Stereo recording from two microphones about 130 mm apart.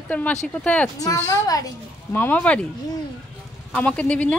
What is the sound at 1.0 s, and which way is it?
Speech, 30° left (ahead or behind).